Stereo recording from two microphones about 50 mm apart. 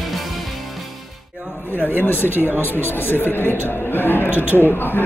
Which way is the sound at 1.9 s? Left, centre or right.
Left.